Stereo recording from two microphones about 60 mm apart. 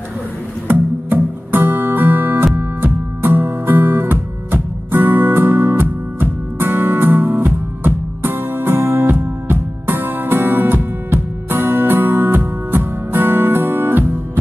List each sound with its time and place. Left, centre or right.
0.7 s music: right